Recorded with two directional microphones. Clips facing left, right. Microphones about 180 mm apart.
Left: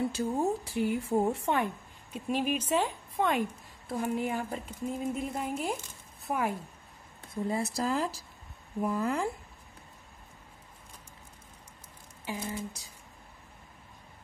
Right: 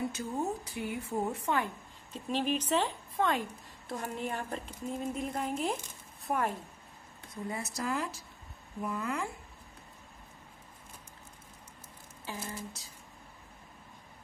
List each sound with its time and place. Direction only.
0.1 s a woman's voice: 30° left (ahead or behind)
2.1 s speech: 10° left (ahead or behind)
7.4 s speech: 30° left (ahead or behind)
12.3 s speech: 15° left (ahead or behind)